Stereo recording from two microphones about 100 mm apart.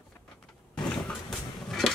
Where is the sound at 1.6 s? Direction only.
5° left (ahead or behind).